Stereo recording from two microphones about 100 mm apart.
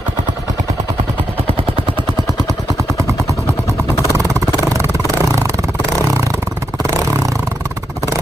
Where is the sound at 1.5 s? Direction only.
75° right (ahead or behind).